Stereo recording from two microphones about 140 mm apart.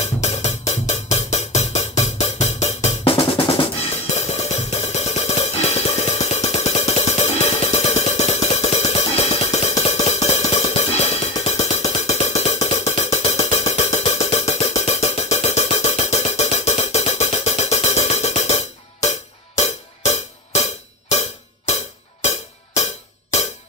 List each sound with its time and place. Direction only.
0.0 s music: 50° left (ahead or behind)
4.2 s music: 50° left (ahead or behind)